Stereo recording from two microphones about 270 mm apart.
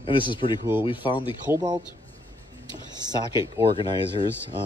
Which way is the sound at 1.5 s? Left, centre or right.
Centre.